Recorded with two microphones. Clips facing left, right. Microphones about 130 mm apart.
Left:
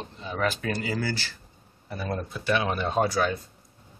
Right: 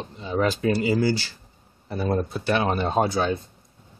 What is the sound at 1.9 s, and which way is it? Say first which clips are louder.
Speech: right 7 dB; 30° right (ahead or behind).